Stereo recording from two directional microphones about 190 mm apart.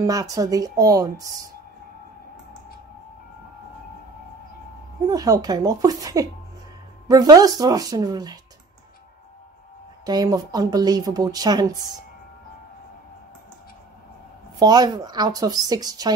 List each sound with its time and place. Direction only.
0.0 s speech: 20° right (ahead or behind)
5.0 s speech: 20° right (ahead or behind)
10.0 s speech: 20° right (ahead or behind)
14.6 s speech: 20° right (ahead or behind)